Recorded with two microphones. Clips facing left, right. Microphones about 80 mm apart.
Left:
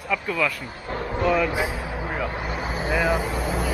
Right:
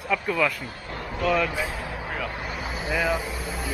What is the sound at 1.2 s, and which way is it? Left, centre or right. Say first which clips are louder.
Speech: left 2 dB; centre.